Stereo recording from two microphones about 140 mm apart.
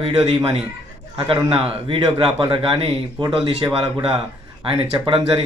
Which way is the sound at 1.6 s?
40° right (ahead or behind).